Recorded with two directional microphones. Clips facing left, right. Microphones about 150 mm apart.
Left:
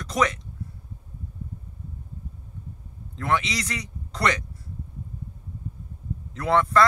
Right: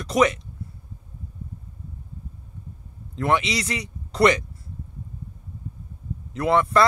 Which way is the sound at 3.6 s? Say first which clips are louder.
Right 3 dB; 25° right (ahead or behind).